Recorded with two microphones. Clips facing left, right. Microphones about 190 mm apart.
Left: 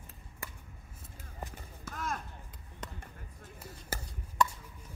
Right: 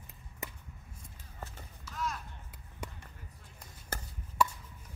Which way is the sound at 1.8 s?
50° left (ahead or behind).